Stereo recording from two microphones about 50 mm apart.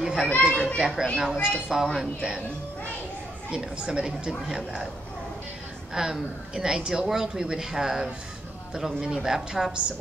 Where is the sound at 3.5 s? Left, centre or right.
Centre.